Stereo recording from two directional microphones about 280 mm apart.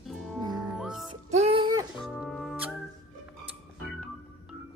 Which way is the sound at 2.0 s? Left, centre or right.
Centre.